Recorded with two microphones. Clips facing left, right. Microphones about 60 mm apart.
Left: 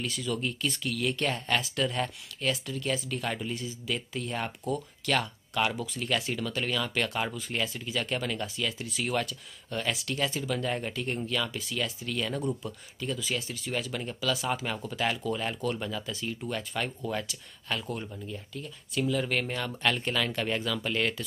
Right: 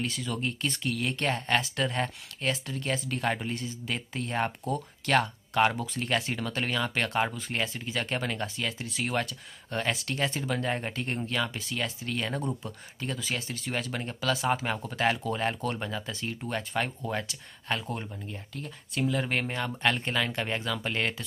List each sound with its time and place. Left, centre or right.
0.0 s speech: right